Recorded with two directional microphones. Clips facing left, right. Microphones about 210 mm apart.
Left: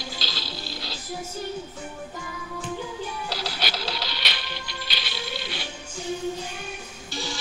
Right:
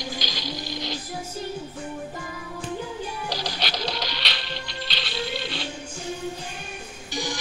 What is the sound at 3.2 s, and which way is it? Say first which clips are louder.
Printer: right 1 dB; 15° right (ahead or behind).